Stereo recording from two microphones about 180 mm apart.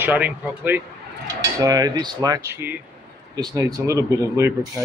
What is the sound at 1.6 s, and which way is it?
Speech, 20° right (ahead or behind).